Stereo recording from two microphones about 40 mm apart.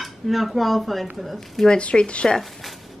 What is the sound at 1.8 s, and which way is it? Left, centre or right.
Speech, left.